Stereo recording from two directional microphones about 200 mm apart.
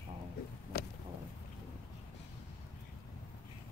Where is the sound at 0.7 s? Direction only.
50° left (ahead or behind).